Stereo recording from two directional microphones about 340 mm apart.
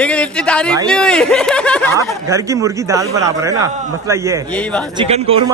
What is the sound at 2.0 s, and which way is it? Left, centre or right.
Speech, centre.